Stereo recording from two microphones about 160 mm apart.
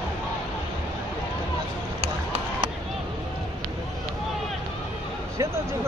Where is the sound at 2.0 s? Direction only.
35° right (ahead or behind).